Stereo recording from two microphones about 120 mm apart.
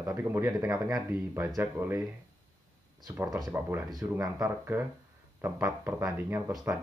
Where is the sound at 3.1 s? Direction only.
30° right (ahead or behind).